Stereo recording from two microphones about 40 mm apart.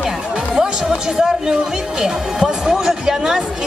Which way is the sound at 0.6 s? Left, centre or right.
Centre.